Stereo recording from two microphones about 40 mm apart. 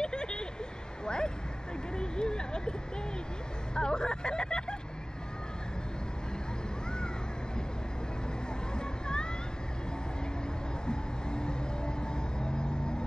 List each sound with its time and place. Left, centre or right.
0.0 s vehicle: left
3.7 s vehicle: left
8.7 s hubbub: left
10.9 s vehicle: left